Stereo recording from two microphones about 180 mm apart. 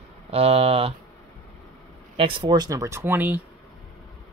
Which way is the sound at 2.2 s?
30° right (ahead or behind).